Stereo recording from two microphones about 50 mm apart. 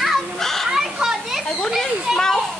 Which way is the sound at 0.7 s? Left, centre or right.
Centre.